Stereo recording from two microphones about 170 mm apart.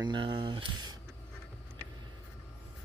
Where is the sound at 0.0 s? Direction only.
25° right (ahead or behind).